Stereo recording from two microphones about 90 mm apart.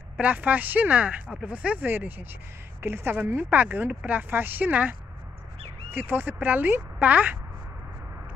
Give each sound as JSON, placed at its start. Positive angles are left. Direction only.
{"t": 0.2, "sound": "speech", "side_deg": -15}